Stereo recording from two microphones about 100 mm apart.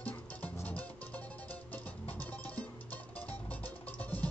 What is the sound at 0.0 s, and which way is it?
Music, 15° left (ahead or behind).